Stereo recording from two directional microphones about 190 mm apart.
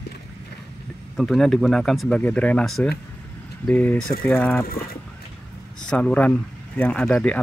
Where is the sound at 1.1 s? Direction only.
Centre (ahead or behind).